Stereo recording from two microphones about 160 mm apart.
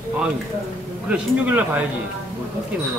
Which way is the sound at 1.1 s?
10° right (ahead or behind).